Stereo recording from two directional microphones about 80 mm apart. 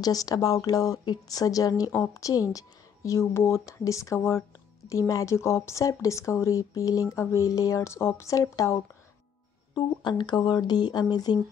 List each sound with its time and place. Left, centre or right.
0.0 s speech: left
1.0 s speech: left
9.8 s speech: left